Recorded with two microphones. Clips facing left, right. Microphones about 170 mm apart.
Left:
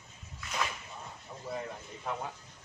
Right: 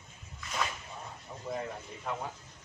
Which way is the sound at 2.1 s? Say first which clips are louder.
Even; 5° left (ahead or behind).